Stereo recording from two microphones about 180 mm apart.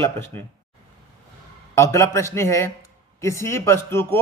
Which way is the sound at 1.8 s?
15° left (ahead or behind).